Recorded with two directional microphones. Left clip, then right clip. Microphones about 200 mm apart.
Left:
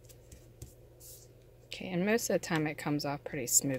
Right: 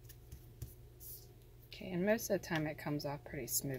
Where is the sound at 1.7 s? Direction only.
50° left (ahead or behind).